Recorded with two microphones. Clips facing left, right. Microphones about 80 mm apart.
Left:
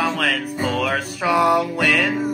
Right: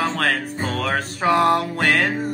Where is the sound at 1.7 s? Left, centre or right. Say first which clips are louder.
Even; right.